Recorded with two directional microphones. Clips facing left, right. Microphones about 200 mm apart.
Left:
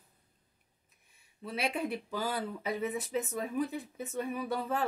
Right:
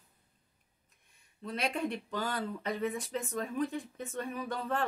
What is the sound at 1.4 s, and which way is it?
Speech, 5° left (ahead or behind).